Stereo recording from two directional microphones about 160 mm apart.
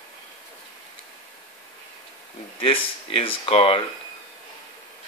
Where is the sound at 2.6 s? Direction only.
35° left (ahead or behind).